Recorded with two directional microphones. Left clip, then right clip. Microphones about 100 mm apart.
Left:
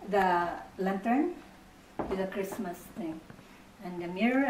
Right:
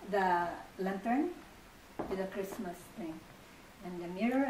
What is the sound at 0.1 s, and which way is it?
A woman's voice, 5° right (ahead or behind).